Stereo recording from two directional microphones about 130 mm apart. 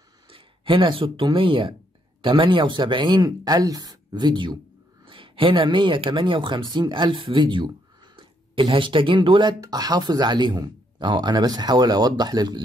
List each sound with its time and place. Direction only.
0.3 s speech: 40° right (ahead or behind)